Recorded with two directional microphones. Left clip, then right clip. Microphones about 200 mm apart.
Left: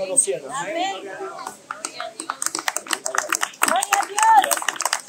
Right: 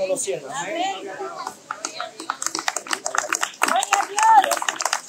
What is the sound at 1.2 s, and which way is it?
Typing, 50° left (ahead or behind).